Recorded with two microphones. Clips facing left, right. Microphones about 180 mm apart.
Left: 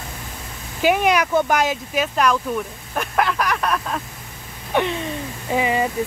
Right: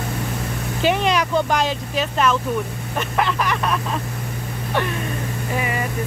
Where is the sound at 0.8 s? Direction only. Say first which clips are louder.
Left 2 dB; 10° left (ahead or behind).